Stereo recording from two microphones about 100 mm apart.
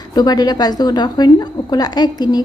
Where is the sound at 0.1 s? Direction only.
40° left (ahead or behind).